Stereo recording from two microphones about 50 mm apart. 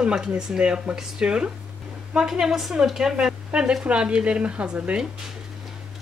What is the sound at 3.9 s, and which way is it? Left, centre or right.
Speech, right.